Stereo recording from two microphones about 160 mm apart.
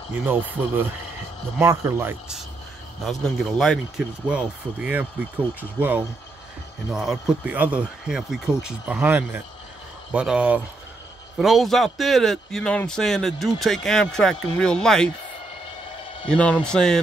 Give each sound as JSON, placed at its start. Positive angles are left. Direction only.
{"t": 0.1, "sound": "speech", "side_deg": -10}
{"t": 3.1, "sound": "a man's voice", "side_deg": 0}
{"t": 4.3, "sound": "a man's voice", "side_deg": -10}
{"t": 16.3, "sound": "a man's voice", "side_deg": 10}